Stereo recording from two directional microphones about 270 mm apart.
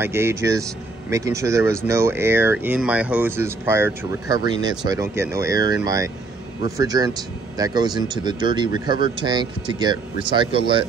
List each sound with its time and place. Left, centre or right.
0.0 s speech: centre